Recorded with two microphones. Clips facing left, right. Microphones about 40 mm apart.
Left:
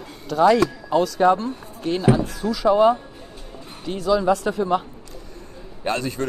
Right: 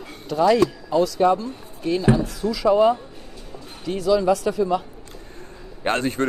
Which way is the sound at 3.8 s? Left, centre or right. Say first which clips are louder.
Right 1 dB; left.